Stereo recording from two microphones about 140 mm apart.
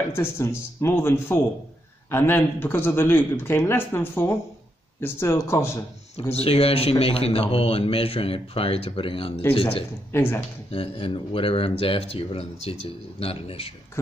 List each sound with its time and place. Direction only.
0.1 s speech: 15° left (ahead or behind)
6.3 s a man's voice: 45° left (ahead or behind)
10.1 s speech: 15° left (ahead or behind)
10.7 s a man's voice: 40° left (ahead or behind)